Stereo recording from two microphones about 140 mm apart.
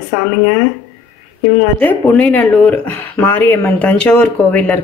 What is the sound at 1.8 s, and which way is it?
Speech, 10° left (ahead or behind).